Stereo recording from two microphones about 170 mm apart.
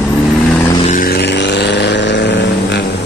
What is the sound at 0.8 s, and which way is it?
Vehicle, 55° left (ahead or behind).